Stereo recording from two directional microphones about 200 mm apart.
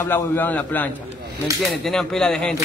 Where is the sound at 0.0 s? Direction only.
10° left (ahead or behind).